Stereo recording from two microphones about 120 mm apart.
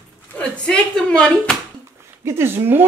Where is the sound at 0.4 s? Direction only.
5° left (ahead or behind).